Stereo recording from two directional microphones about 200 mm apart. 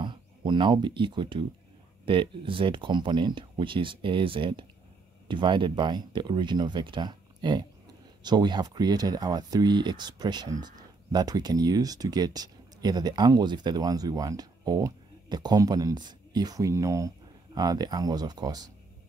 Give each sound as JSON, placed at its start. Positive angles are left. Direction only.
{"t": 0.0, "sound": "speech", "side_deg": -25}